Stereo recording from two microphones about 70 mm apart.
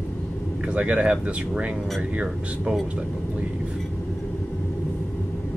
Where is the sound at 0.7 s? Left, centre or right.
Centre.